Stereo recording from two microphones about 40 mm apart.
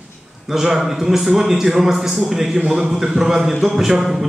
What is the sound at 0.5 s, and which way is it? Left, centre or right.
A man's voice, centre.